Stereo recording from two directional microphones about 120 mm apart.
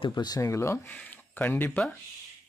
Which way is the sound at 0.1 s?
35° left (ahead or behind).